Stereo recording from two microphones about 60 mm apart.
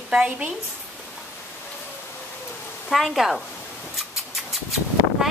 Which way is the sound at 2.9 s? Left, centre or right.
Centre.